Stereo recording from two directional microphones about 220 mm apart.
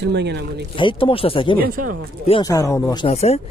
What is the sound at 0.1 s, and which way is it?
Speech, 50° right (ahead or behind).